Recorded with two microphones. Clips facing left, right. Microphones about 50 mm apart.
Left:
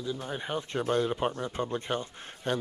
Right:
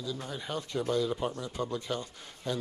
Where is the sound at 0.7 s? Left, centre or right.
Left.